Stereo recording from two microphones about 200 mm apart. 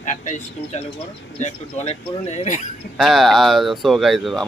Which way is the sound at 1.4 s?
35° left (ahead or behind).